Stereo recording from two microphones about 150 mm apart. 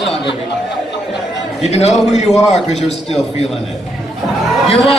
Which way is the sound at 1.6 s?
50° left (ahead or behind).